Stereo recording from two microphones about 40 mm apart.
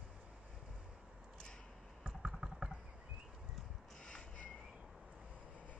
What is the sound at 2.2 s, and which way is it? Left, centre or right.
Vehicle, centre.